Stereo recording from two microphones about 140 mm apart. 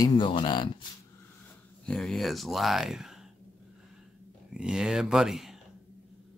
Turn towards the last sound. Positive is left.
turn(degrees=-5)  # may be behind; listen again after turning